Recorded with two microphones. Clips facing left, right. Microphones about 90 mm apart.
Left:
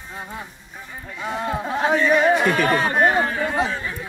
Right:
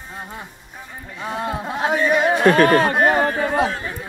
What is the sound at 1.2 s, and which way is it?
Speech, 5° right (ahead or behind).